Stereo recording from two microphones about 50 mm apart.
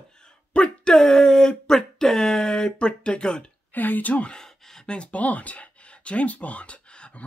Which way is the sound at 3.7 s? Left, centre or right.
Left.